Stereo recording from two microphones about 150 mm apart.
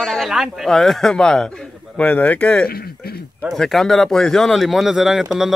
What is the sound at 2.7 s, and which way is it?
Speech, 90° left.